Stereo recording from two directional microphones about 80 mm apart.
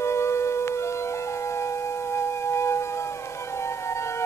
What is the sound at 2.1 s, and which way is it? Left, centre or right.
Music, left.